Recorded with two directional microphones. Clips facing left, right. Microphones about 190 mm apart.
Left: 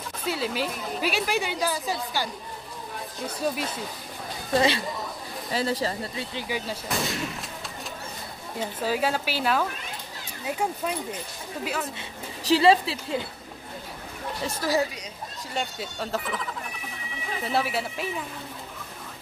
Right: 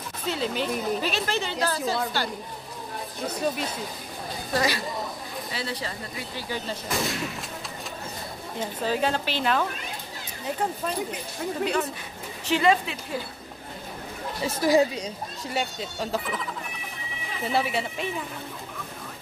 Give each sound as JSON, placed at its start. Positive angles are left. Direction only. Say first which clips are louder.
{"t": 0.3, "sound": "speech", "louder": "right 1 dB", "side_deg": 5}
{"t": 4.6, "sound": "speech", "louder": "left 3 dB", "side_deg": 25}
{"t": 5.5, "sound": "speech", "louder": "left 8 dB", "side_deg": 40}
{"t": 6.5, "sound": "speech", "louder": "right 1 dB", "side_deg": 10}
{"t": 8.8, "sound": "speech", "louder": "even", "side_deg": 5}
{"t": 12.4, "sound": "speech", "louder": "left 3 dB", "side_deg": 35}
{"t": 14.6, "sound": "a woman's voice", "louder": "right 5 dB", "side_deg": -15}
{"t": 15.5, "sound": "speech", "louder": "right 1 dB", "side_deg": 0}
{"t": 17.5, "sound": "speech", "louder": "right 1 dB", "side_deg": 0}